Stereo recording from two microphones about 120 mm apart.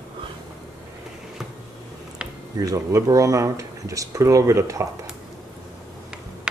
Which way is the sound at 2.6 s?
30° right (ahead or behind).